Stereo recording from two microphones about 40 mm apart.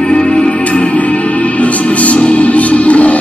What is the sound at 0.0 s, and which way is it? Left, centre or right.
Music, left.